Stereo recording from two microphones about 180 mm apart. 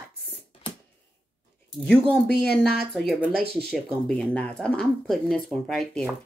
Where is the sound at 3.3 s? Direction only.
60° right (ahead or behind).